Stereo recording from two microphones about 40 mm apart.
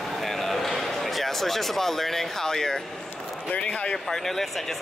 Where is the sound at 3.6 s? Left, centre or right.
Left.